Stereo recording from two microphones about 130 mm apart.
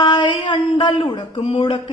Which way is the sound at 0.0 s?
35° left (ahead or behind).